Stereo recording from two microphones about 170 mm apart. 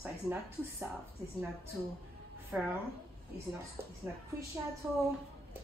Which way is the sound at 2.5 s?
10° right (ahead or behind).